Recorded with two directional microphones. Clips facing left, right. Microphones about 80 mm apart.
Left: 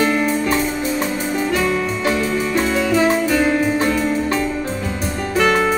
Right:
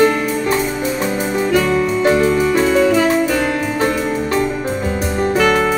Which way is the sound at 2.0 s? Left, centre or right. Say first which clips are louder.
Right 6 dB; right.